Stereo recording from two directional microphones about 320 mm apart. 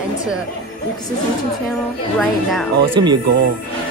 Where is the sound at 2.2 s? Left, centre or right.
Centre.